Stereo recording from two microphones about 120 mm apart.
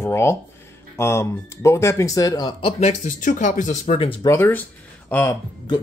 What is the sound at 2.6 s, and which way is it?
Speech, 70° left (ahead or behind).